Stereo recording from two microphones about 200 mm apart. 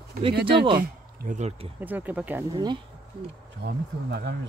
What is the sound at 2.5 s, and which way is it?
Speech, 20° right (ahead or behind).